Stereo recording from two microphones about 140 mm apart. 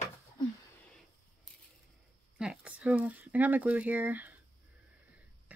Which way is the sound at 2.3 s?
5° right (ahead or behind).